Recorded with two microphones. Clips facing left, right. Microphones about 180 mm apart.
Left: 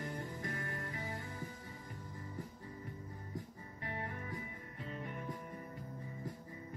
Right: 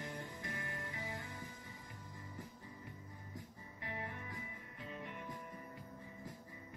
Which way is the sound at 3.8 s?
40° left (ahead or behind).